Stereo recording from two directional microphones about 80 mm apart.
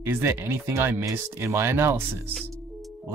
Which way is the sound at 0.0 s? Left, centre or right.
Right.